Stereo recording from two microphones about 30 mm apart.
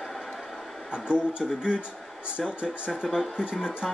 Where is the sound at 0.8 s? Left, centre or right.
Right.